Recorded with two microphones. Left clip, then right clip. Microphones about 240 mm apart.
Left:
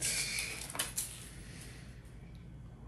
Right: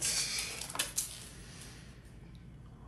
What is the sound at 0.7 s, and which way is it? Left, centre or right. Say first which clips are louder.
Dishes: right 3 dB; centre.